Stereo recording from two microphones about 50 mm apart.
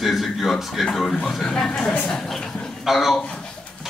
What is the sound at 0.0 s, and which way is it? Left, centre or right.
Speech, centre.